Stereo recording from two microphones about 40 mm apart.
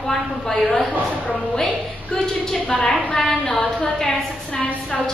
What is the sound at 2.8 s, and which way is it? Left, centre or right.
A woman's voice, centre.